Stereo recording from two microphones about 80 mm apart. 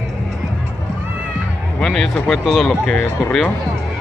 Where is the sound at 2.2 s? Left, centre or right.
Centre.